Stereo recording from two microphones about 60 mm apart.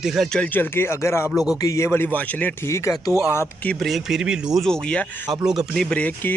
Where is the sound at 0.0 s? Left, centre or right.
Centre.